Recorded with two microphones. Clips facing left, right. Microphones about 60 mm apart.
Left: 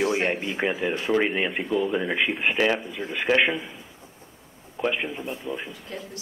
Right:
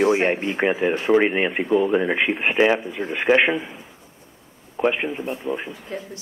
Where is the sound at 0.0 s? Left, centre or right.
Right.